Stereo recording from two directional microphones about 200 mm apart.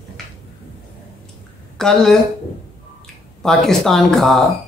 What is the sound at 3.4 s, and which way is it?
Speech, centre (ahead or behind).